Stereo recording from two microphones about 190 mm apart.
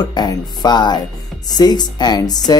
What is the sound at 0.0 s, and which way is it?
Speech, 20° left (ahead or behind).